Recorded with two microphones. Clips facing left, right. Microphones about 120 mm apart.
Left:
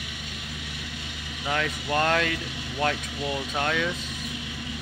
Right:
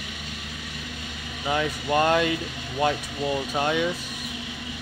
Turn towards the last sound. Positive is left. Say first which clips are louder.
# right 3 dB
turn(degrees=-15)  # may be behind; listen again after turning